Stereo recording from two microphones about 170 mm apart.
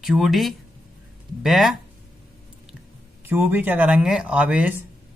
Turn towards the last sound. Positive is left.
turn(degrees=-10)  # may be behind; listen again after turning